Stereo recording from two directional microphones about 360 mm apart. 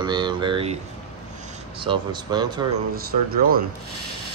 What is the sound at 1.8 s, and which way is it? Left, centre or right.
Speech, centre.